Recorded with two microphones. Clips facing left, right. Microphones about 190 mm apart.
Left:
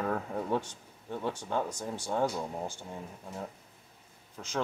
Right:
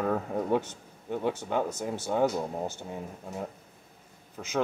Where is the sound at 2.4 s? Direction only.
20° right (ahead or behind).